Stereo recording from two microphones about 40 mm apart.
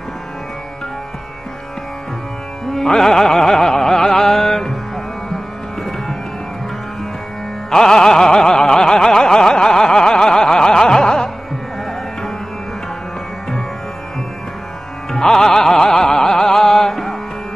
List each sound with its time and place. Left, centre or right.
2.7 s music: centre
7.7 s a sound: centre
15.0 s music: centre